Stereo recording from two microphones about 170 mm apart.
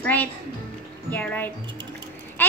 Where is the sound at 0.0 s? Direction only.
10° left (ahead or behind).